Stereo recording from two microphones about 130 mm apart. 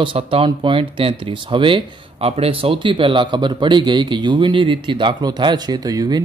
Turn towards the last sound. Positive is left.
turn(degrees=-30)  # may be behind; listen again after turning